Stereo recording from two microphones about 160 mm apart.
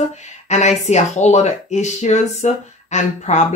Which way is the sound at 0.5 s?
45° left (ahead or behind).